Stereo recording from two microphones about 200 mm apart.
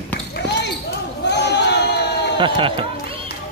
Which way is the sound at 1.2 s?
60° left (ahead or behind).